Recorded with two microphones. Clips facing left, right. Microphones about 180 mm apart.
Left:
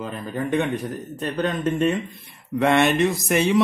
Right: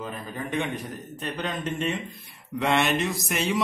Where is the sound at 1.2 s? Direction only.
50° left (ahead or behind).